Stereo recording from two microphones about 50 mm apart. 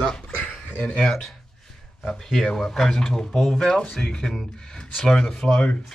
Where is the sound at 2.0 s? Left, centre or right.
Centre.